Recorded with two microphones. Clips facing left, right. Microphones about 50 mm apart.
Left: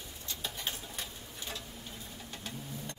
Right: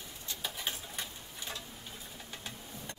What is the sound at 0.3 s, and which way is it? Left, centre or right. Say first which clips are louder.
Rodents: even; centre.